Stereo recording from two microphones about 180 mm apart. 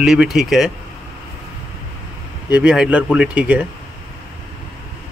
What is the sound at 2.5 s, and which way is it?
Speech, 5° right (ahead or behind).